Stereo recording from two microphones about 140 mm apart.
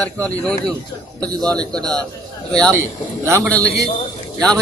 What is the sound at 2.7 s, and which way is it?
Speech, 20° right (ahead or behind).